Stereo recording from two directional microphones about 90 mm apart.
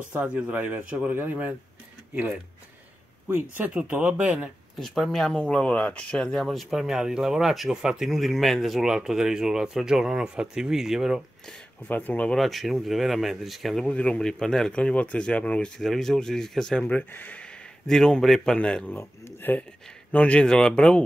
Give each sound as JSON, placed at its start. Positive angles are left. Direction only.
{"t": 0.1, "sound": "a man's voice", "side_deg": -15}
{"t": 4.7, "sound": "speech", "side_deg": 0}
{"t": 11.9, "sound": "a man's voice", "side_deg": 20}
{"t": 12.4, "sound": "speech", "side_deg": 0}
{"t": 15.8, "sound": "speech", "side_deg": 0}
{"t": 16.8, "sound": "a man's voice", "side_deg": 20}
{"t": 17.8, "sound": "a man's voice", "side_deg": 5}
{"t": 18.9, "sound": "a man's voice", "side_deg": 25}
{"t": 20.1, "sound": "a man's voice", "side_deg": 15}